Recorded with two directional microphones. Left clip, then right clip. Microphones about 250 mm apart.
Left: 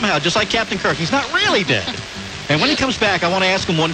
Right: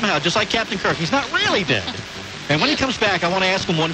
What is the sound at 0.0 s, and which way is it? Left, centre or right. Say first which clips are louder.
Speech: left 2 dB; left.